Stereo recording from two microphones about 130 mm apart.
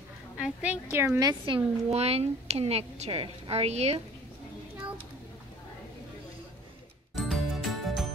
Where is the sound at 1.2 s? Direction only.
40° right (ahead or behind).